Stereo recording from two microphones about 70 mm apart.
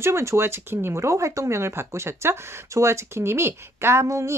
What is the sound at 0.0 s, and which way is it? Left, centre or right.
Speech, right.